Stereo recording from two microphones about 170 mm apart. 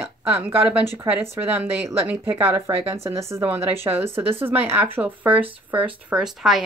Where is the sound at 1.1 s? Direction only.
15° right (ahead or behind).